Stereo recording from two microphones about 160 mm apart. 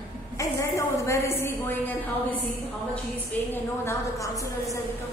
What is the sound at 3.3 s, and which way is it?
A woman's voice, 10° left (ahead or behind).